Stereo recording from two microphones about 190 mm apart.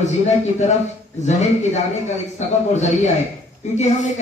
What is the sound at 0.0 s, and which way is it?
Speech, 35° left (ahead or behind).